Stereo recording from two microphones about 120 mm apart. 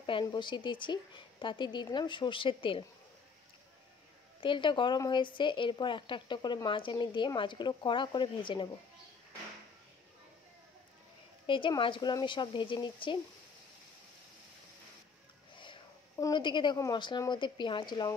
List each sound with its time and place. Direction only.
0.0 s speech: 40° left (ahead or behind)
4.4 s speech: 45° left (ahead or behind)
11.4 s speech: 45° left (ahead or behind)
15.5 s a sound: 45° left (ahead or behind)
16.3 s speech: 40° left (ahead or behind)